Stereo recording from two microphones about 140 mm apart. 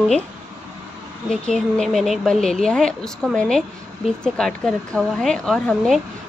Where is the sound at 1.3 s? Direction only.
5° left (ahead or behind).